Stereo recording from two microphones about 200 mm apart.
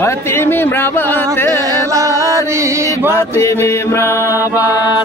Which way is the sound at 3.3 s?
15° left (ahead or behind).